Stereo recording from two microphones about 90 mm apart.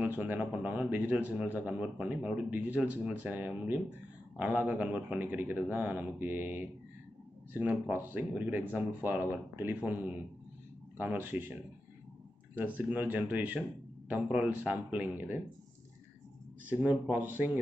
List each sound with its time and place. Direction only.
0.0 s speech: 20° right (ahead or behind)
11.0 s speech: 20° right (ahead or behind)
12.5 s speech: 20° right (ahead or behind)
16.6 s speech: 15° right (ahead or behind)